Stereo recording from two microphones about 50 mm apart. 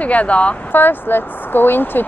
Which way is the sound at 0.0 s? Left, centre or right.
Left.